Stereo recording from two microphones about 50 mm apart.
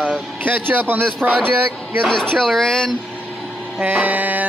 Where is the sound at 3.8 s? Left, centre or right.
Right.